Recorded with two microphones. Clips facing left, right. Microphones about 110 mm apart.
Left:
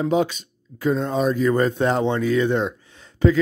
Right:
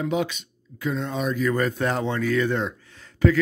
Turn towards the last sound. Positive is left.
turn(degrees=20)  # may be behind; listen again after turning